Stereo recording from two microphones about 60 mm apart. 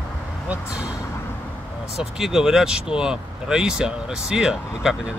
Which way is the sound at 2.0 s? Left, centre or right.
Centre.